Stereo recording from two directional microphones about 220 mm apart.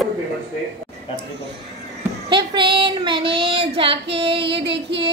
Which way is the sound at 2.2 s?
20° right (ahead or behind).